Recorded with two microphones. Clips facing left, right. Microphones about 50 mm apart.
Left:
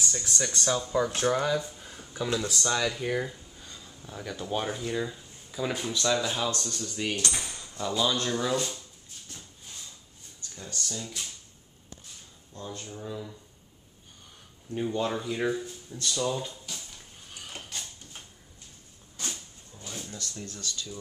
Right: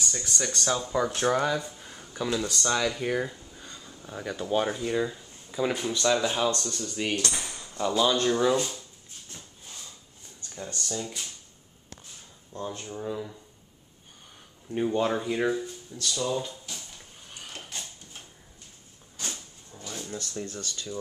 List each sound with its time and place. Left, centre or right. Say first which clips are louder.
0.0 s speech: even; centre
0.7 s speech: even; centre
6.5 s speech: right 2 dB; centre
7.2 s speech: right 1 dB; right
7.4 s ping: right 4 dB; right
8.0 s speech: right 5 dB; centre
10.5 s speech: right 3 dB; centre
12.5 s speech: right 4 dB; right
14.7 s speech: right 3 dB; right
15.9 s speech: even; centre
17.6 s a sound: even; centre
19.2 s a sound: right 1 dB; right
20.1 s speech: right 5 dB; right